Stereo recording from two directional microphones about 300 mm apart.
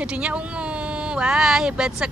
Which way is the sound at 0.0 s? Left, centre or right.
Centre.